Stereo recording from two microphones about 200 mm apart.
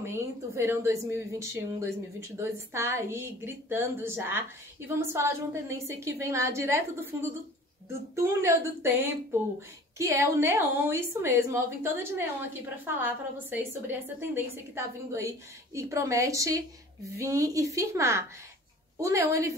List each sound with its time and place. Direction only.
0.0 s a woman's voice: 10° right (ahead or behind)